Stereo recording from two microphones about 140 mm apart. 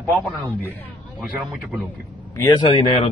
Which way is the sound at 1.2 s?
10° right (ahead or behind).